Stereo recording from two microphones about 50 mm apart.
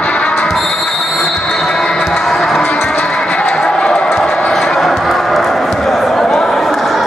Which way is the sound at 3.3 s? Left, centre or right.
Left.